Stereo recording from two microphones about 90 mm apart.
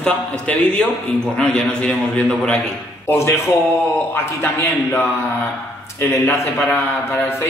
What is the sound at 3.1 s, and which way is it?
Speech, 25° left (ahead or behind).